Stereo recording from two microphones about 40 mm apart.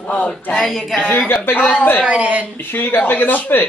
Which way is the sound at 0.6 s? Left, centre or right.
Centre.